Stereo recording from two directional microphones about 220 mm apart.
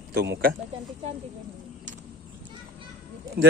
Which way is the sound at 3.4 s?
45° right (ahead or behind).